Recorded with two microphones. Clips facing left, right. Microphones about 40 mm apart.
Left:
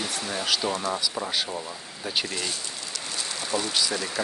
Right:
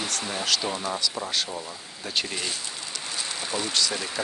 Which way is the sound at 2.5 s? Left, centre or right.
Right.